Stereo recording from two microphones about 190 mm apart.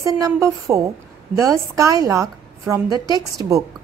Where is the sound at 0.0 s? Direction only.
15° right (ahead or behind).